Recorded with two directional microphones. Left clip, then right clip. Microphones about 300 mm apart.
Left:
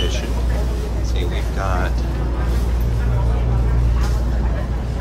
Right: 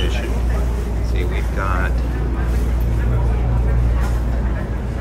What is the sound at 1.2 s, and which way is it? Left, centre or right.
Vehicle, centre.